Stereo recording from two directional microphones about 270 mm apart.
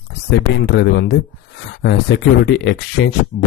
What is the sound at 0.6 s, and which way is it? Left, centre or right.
Speech, left.